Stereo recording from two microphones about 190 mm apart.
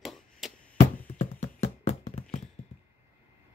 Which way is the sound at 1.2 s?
35° left (ahead or behind).